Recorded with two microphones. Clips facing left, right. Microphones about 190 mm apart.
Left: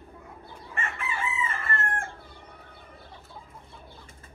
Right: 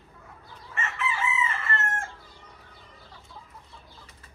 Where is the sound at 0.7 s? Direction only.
55° left (ahead or behind).